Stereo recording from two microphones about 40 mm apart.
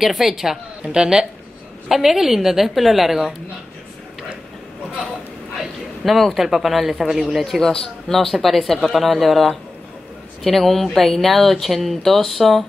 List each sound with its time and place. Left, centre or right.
0.0 s a woman's voice: centre
0.8 s speech: centre
1.9 s a woman's voice: centre
6.0 s speech: centre
7.2 s speech: centre